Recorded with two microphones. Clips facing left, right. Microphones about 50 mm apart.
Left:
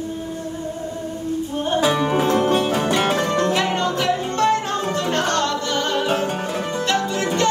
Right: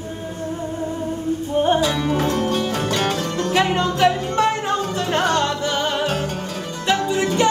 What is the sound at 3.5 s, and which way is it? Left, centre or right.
Music, centre.